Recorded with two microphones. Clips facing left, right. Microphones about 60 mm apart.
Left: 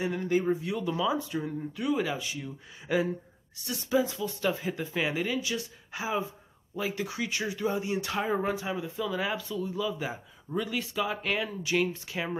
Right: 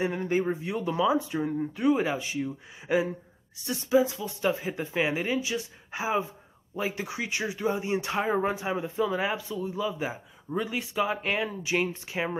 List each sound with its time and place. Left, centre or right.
0.0 s speech: right
3.9 s speech: centre
4.2 s speech: centre